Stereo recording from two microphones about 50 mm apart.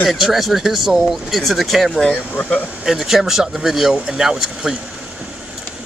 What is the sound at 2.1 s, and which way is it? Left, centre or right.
Speech, left.